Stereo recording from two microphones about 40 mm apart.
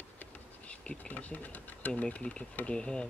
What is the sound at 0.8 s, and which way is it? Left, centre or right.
Speech, left.